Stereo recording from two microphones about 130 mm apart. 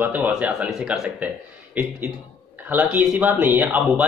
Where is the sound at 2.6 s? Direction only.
15° right (ahead or behind).